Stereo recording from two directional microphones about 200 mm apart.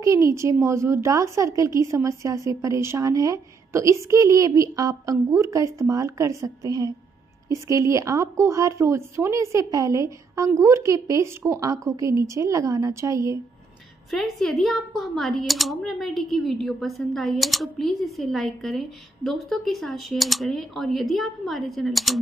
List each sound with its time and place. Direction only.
0.0 s a woman's voice: 15° right (ahead or behind)
14.1 s speech: centre (ahead or behind)